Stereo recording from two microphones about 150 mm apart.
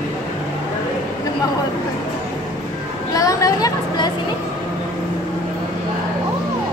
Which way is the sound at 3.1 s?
20° left (ahead or behind).